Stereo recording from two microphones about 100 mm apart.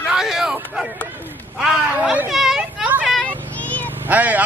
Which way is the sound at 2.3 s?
Centre (ahead or behind).